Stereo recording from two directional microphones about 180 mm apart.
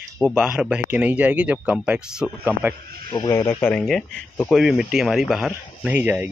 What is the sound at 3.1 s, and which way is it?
Speech, 20° left (ahead or behind).